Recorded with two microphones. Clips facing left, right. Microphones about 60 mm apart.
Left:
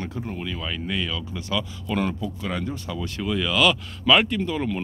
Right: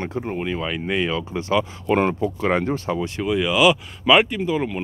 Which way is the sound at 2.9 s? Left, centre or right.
Right.